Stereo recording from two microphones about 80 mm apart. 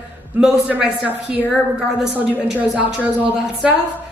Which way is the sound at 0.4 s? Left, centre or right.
Centre.